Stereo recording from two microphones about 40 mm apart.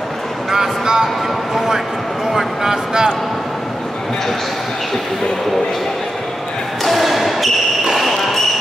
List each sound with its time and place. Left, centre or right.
0.5 s speech: centre
2.3 s speech: centre
6.8 s basketball bounce: centre